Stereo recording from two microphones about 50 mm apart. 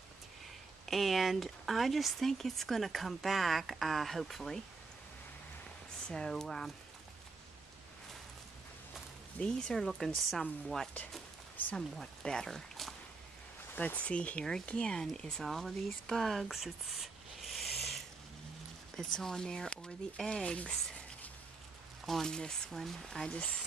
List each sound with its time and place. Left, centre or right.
0.8 s speech: centre
6.0 s speech: centre
9.4 s speech: left
9.8 s speech: centre
13.7 s speech: left; by 15.4 s centre
15.4 s speech: centre
16.1 s a sound: centre
18.9 s speech: centre
22.0 s speech: centre
22.3 s speech: centre